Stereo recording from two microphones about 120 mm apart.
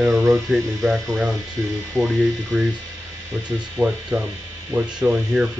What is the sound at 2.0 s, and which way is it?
Speech, 30° right (ahead or behind).